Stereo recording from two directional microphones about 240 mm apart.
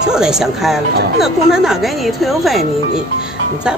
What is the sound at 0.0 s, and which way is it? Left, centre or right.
Speech, centre.